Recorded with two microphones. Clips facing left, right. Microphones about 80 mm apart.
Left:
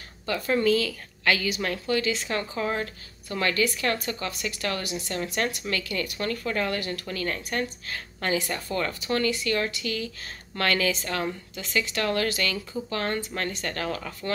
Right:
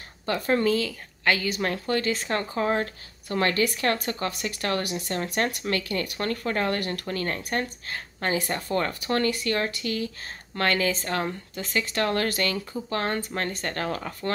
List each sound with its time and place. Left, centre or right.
0.3 s a woman's voice: right
0.7 s a woman's voice: right
7.1 s a woman's voice: right
8.4 s a woman's voice: right
10.5 s a woman's voice: right
12.9 s speech: right
13.5 s a woman's voice: right